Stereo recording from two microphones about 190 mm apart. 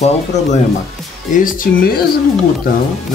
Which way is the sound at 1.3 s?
45° left (ahead or behind).